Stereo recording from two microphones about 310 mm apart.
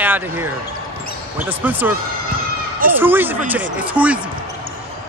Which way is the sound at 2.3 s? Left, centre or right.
Right.